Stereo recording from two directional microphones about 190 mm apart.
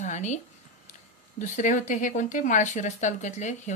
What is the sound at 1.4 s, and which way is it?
A woman's voice, 40° left (ahead or behind).